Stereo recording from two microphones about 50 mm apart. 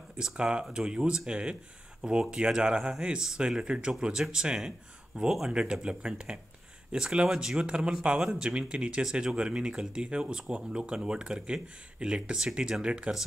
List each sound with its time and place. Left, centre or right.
0.2 s speech: centre